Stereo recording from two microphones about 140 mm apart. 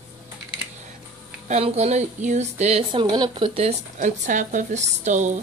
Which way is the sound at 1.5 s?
50° right (ahead or behind).